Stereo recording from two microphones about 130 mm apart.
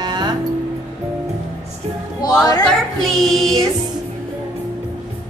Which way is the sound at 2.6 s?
Centre (ahead or behind).